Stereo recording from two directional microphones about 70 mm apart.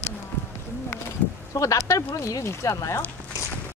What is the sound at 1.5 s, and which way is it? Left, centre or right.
Speech, left.